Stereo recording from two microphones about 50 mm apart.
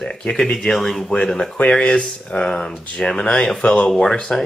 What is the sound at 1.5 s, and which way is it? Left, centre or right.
Speech, left.